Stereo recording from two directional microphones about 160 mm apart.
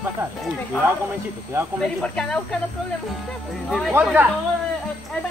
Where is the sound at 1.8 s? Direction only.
5° left (ahead or behind).